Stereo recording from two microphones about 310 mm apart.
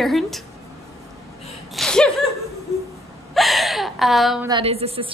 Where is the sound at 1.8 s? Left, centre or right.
Centre.